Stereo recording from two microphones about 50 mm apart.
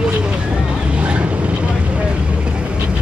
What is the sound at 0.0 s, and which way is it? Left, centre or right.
Vehicle, right.